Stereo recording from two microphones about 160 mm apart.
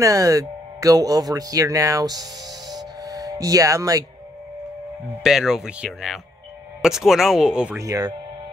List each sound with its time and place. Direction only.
0.0 s speech: 20° right (ahead or behind)
2.7 s music: 25° right (ahead or behind)
5.2 s speech: 5° right (ahead or behind)
7.8 s speech: 20° right (ahead or behind)